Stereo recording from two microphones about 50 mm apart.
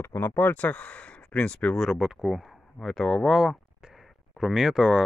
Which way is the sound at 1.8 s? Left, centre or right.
Centre.